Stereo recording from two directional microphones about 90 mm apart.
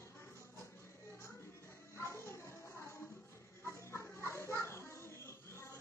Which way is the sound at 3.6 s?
30° left (ahead or behind).